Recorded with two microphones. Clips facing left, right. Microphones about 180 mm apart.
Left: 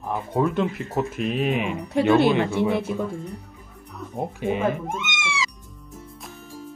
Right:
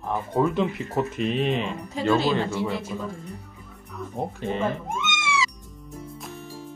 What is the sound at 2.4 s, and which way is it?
Speech, 60° left (ahead or behind).